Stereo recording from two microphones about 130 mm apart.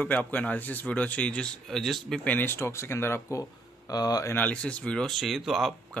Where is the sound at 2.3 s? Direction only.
20° left (ahead or behind).